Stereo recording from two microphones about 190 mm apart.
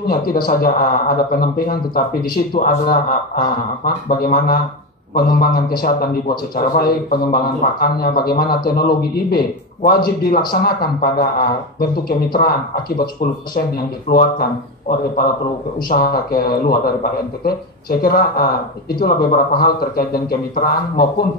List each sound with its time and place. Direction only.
0.0 s speech: 50° left (ahead or behind)
4.2 s speech: 50° left (ahead or behind)
14.0 s speech: 50° left (ahead or behind)